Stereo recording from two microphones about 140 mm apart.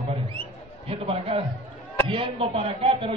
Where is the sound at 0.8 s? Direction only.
45° right (ahead or behind).